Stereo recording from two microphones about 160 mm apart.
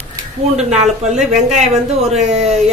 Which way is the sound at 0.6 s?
45° right (ahead or behind).